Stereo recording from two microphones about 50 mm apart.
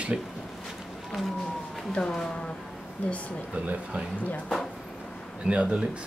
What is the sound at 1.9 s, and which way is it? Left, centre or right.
Speech, centre.